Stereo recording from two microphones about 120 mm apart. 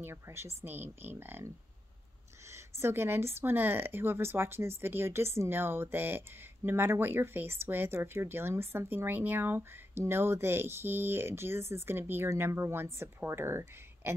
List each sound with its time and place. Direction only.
0.0 s speech: 20° right (ahead or behind)
2.5 s speech: 20° right (ahead or behind)